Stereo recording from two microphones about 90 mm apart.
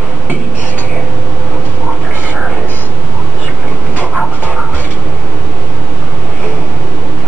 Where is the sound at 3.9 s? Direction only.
15° right (ahead or behind).